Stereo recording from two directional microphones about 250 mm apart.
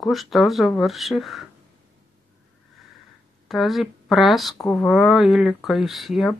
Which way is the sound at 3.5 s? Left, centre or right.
Centre.